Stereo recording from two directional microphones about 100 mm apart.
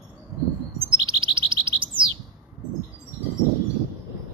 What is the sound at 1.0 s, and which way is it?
Bird, 60° right (ahead or behind).